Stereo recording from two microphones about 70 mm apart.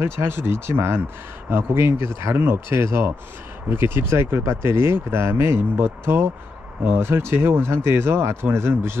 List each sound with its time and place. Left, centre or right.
0.0 s speech: right